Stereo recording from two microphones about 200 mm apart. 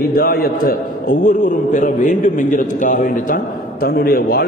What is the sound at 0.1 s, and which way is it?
A man's voice, 45° left (ahead or behind).